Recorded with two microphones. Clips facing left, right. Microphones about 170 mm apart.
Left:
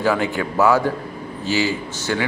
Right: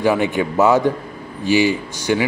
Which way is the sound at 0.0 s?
20° right (ahead or behind).